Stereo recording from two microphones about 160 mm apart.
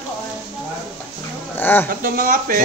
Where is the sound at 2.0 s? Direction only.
60° right (ahead or behind).